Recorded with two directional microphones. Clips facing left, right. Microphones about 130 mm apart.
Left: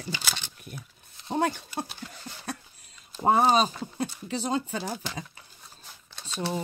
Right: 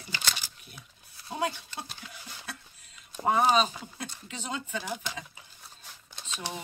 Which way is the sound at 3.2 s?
35° left (ahead or behind).